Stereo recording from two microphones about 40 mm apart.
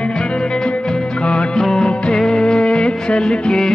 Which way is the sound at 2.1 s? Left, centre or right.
Centre.